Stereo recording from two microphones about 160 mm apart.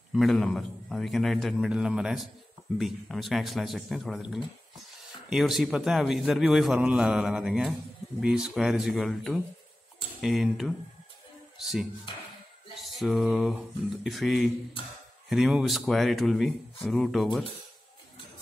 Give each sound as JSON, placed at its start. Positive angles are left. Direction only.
{"t": 0.1, "sound": "a man's voice", "side_deg": 0}
{"t": 12.1, "sound": "music", "side_deg": 35}
{"t": 12.7, "sound": "a man's voice", "side_deg": 0}